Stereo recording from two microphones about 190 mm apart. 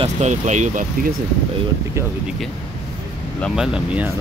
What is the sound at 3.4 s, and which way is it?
Speech, centre (ahead or behind).